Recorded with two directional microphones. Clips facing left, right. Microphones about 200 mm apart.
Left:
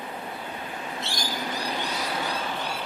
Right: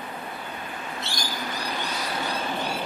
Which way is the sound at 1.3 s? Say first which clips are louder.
Left 2 dB; 25° left (ahead or behind).